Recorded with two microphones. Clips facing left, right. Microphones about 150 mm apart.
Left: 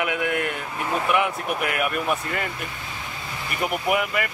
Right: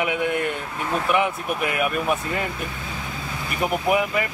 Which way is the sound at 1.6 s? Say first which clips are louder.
Right 3 dB; centre (ahead or behind).